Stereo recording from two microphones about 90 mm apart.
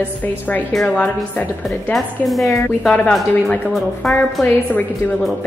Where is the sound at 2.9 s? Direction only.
15° left (ahead or behind).